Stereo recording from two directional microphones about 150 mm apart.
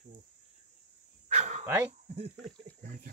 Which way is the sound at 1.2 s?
50° right (ahead or behind).